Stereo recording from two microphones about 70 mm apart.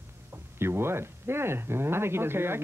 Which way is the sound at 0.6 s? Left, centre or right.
Right.